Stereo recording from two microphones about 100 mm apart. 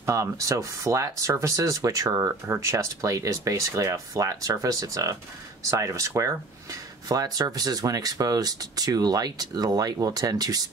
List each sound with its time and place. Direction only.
0.0 s speech: 35° right (ahead or behind)